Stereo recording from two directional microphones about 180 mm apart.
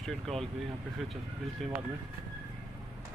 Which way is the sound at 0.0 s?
Centre (ahead or behind).